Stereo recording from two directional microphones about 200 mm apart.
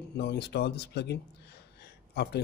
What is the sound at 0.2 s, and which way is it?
Speech, 55° left (ahead or behind).